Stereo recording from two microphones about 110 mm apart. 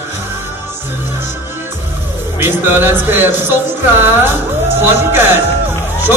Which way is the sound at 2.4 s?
20° right (ahead or behind).